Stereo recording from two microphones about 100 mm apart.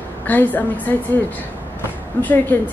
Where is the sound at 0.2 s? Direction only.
20° left (ahead or behind).